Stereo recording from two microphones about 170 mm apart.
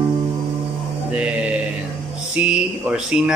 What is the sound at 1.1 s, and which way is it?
Mantra, 5° right (ahead or behind).